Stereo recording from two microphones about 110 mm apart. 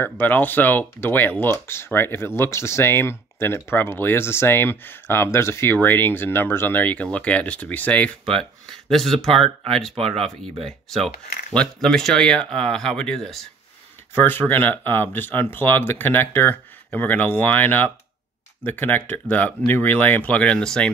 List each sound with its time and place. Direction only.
0.0 s speech: 15° left (ahead or behind)
8.8 s speech: centre (ahead or behind)
11.5 s speech: 5° left (ahead or behind)
14.1 s speech: 20° left (ahead or behind)